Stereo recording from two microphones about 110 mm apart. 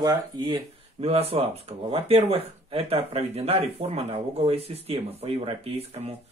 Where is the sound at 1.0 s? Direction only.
65° right (ahead or behind).